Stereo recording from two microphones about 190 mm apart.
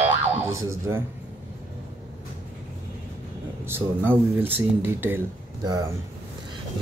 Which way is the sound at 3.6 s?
10° right (ahead or behind).